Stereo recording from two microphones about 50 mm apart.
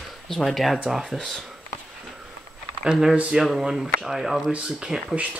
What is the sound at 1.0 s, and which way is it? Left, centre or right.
Speech, centre.